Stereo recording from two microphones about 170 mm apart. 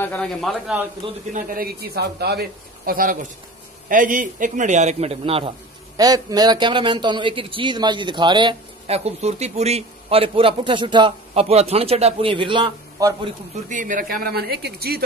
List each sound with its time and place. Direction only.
0.0 s a man's voice: 5° left (ahead or behind)
1.3 s a man's voice: 60° right (ahead or behind); by 5.5 s 35° right (ahead or behind)
5.9 s a man's voice: 20° right (ahead or behind)
13.7 s a man's voice: 50° right (ahead or behind); by 15.0 s 65° right (ahead or behind)